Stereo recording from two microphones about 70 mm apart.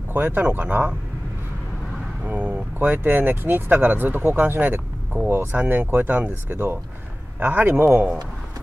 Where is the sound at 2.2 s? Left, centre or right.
Right.